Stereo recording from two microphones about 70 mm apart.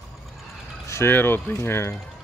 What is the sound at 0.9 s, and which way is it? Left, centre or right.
Speech, left.